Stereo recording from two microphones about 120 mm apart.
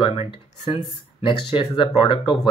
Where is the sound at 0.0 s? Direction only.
50° left (ahead or behind).